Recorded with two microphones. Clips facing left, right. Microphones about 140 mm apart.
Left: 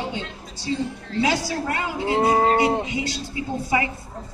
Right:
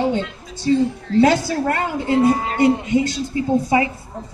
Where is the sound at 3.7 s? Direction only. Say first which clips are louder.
Right 4 dB; 30° right (ahead or behind).